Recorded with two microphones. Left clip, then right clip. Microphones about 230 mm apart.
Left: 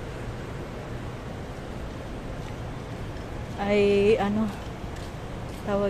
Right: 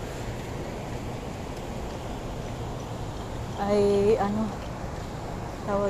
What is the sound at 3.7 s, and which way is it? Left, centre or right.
Speech, centre.